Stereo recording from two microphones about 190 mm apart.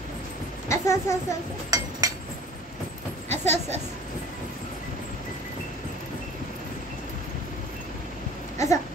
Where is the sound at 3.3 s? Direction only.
35° right (ahead or behind).